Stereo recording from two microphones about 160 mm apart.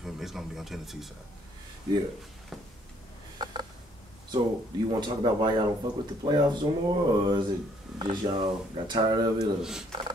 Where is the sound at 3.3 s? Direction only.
30° right (ahead or behind).